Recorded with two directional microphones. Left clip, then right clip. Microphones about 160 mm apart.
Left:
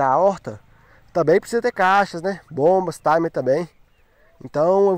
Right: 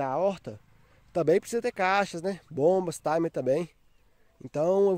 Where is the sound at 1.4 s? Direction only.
10° right (ahead or behind).